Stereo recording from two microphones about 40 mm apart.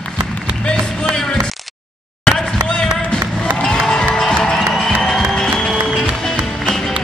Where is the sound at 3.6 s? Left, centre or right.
Centre.